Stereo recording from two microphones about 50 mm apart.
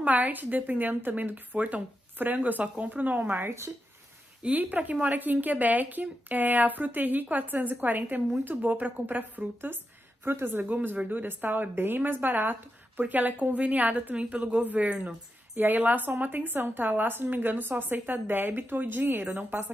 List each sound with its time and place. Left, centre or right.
0.0 s a woman's voice: right
4.4 s a woman's voice: right
10.2 s a woman's voice: right
10.6 s a woman's voice: right
15.5 s a woman's voice: right